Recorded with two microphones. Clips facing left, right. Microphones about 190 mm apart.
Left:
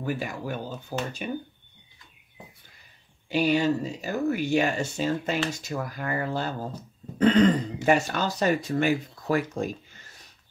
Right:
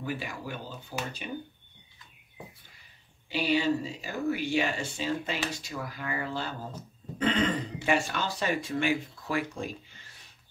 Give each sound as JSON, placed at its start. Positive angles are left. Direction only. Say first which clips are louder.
{"t": 0.0, "sound": "speech", "louder": "left 5 dB", "side_deg": 45}
{"t": 3.3, "sound": "speech", "louder": "left 4 dB", "side_deg": 45}